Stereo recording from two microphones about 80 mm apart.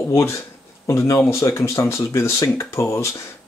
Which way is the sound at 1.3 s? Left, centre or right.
Left.